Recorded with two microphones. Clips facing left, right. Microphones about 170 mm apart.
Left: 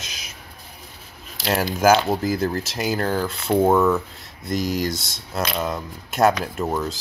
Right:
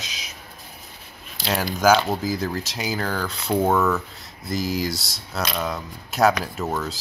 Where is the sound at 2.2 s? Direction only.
55° left (ahead or behind).